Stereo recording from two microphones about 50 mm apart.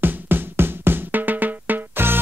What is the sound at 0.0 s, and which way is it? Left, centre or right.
Music, right.